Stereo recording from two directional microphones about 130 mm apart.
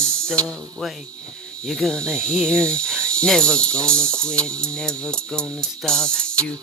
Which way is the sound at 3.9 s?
20° right (ahead or behind).